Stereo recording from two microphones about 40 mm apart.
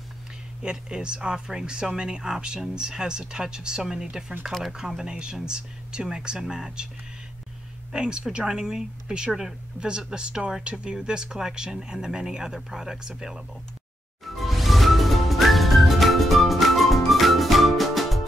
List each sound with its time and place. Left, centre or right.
0.6 s speech: right
7.9 s speech: right
11.1 s speech: centre
14.2 s music: centre